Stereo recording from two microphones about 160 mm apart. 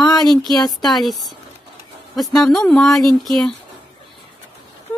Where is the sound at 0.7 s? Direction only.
Centre (ahead or behind).